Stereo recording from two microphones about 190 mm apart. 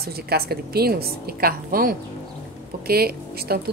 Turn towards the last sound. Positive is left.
turn(degrees=-55)  # may be behind; listen again after turning